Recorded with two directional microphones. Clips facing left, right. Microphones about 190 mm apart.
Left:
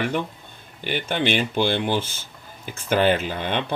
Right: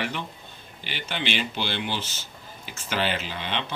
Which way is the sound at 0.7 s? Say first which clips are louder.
Left 8 dB; 50° left (ahead or behind).